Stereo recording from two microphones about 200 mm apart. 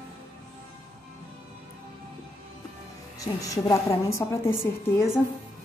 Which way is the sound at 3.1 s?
15° left (ahead or behind).